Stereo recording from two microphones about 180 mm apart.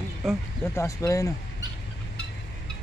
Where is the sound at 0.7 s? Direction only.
15° left (ahead or behind).